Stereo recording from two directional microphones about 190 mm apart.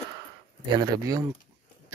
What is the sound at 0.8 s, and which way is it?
Speech, 20° right (ahead or behind).